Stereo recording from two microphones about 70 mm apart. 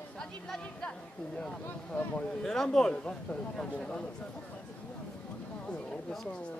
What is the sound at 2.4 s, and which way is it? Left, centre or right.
Speech, centre.